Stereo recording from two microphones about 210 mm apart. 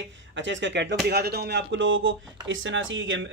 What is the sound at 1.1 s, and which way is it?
A man's voice, 50° right (ahead or behind).